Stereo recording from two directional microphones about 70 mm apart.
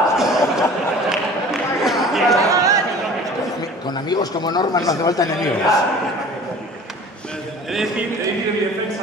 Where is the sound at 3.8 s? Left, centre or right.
Left.